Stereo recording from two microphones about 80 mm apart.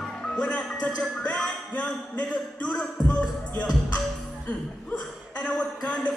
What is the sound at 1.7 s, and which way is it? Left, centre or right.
Speech, centre.